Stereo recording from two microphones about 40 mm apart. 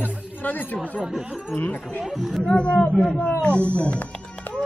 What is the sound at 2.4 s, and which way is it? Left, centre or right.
Speech, left.